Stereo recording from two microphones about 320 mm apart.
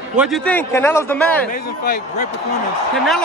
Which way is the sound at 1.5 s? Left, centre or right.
Left.